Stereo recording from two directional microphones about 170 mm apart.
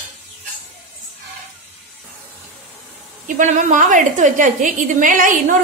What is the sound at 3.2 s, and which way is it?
A woman's voice, 50° right (ahead or behind).